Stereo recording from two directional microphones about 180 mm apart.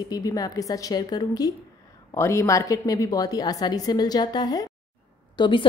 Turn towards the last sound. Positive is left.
turn(degrees=25)  # may be behind; listen again after turning